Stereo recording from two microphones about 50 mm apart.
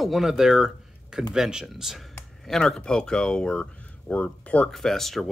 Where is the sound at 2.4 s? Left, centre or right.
Centre; by 4.6 s left.